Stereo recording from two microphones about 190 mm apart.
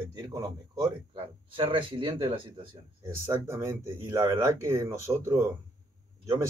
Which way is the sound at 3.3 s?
15° right (ahead or behind).